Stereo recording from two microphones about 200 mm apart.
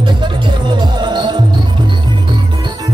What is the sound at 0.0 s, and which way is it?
Music, 20° right (ahead or behind).